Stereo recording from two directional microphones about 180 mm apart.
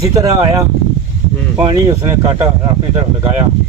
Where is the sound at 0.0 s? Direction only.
20° right (ahead or behind).